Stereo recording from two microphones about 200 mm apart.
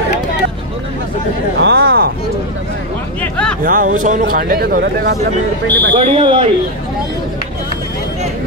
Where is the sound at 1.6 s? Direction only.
55° right (ahead or behind).